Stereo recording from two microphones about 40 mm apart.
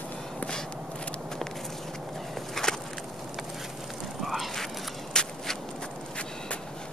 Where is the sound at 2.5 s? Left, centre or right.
Centre.